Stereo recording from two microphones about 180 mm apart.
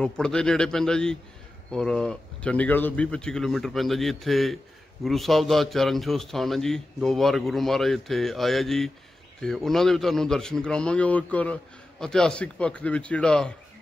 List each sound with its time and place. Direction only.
0.0 s a man's voice: 5° left (ahead or behind)